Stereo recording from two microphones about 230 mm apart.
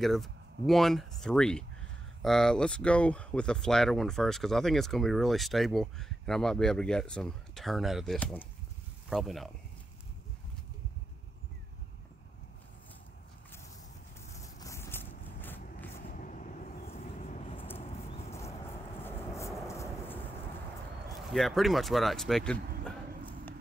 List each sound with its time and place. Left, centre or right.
0.0 s speech: centre
14.3 s vehicle: centre
16.1 s vehicle: left
17.7 s a sound: left
18.3 s a sound: centre
21.3 s speech: centre